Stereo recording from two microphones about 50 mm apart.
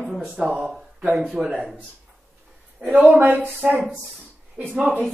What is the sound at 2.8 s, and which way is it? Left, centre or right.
Speech, right.